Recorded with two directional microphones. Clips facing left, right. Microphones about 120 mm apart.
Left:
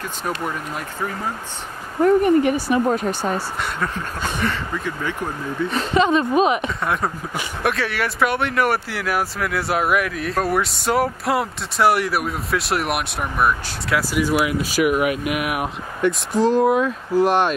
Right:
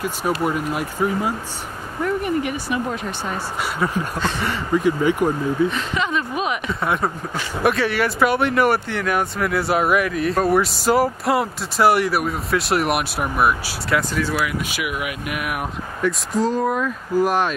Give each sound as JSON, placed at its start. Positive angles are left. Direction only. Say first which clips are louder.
{"t": 0.0, "sound": "speech", "louder": "right 4 dB", "side_deg": -5}
{"t": 2.0, "sound": "a woman's voice", "louder": "left 7 dB", "side_deg": 40}
{"t": 4.4, "sound": "speech", "louder": "right 4 dB", "side_deg": -15}
{"t": 5.7, "sound": "a woman's voice", "louder": "left 6 dB", "side_deg": 35}
{"t": 6.7, "sound": "speech", "louder": "right 1 dB", "side_deg": 0}
{"t": 14.1, "sound": "speech", "louder": "left 3 dB", "side_deg": 15}
{"t": 14.6, "sound": "a woman's voice", "louder": "left 8 dB", "side_deg": 40}
{"t": 15.2, "sound": "speech", "louder": "left 3 dB", "side_deg": 10}